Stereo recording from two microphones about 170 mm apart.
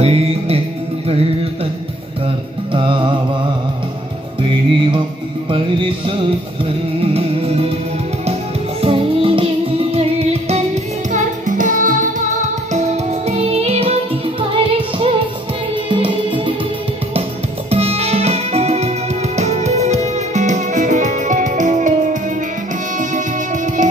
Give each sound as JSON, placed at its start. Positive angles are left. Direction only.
{"t": 0.0, "sound": "music", "side_deg": -35}
{"t": 2.7, "sound": "music", "side_deg": -30}
{"t": 4.4, "sound": "music", "side_deg": -30}
{"t": 8.8, "sound": "music", "side_deg": -30}
{"t": 17.6, "sound": "music", "side_deg": -35}